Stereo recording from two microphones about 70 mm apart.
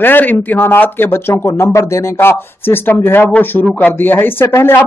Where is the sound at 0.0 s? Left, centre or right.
Left.